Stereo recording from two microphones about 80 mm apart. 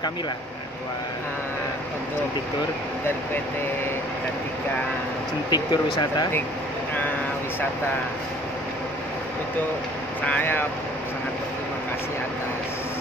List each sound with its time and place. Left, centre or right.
5.5 s speech: left
10.2 s speech: left